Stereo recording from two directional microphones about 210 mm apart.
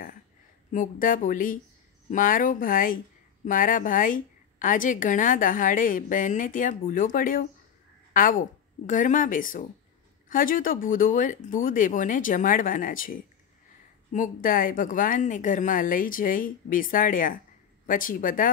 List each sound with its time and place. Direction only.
0.7 s a woman's voice: 40° left (ahead or behind)